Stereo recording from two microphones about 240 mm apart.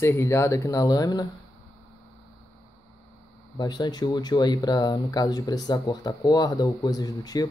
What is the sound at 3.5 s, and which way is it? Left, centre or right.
Speech, centre.